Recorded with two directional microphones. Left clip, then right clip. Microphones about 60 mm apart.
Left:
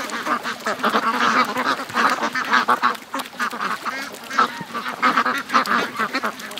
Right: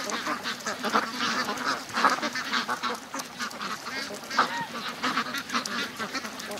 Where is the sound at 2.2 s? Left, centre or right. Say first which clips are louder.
Left 10 dB; left.